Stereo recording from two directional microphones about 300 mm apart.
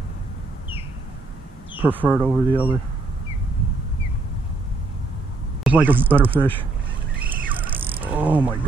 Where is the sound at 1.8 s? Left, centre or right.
Centre.